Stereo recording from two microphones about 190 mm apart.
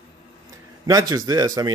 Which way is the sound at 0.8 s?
20° right (ahead or behind).